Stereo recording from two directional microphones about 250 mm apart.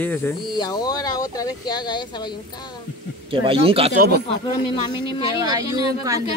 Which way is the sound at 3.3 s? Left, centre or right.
Right.